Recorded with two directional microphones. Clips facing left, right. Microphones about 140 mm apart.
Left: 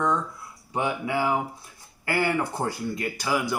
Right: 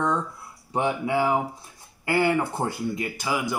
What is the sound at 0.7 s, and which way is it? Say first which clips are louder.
Speech: right 2 dB; 25° right (ahead or behind).